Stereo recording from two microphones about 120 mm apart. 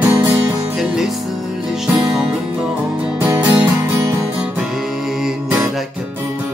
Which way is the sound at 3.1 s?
20° right (ahead or behind).